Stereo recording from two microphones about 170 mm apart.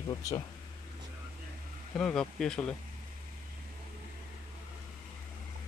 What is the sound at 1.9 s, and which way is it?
Speech, 5° left (ahead or behind).